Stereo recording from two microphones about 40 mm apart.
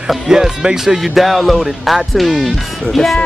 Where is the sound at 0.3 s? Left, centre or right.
Centre.